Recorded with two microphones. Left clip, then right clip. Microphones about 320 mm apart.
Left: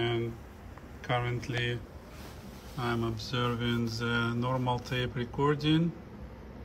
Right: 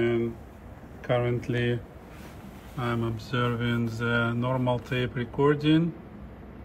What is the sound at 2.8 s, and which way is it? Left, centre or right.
Mantra, centre.